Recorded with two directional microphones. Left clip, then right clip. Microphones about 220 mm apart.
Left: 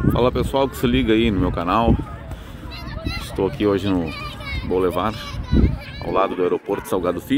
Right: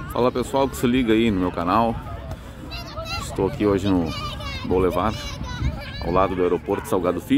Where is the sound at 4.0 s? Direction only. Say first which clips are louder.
Even; 40° right (ahead or behind).